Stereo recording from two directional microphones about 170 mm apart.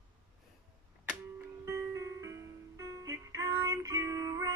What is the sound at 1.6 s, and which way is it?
Music, 15° right (ahead or behind).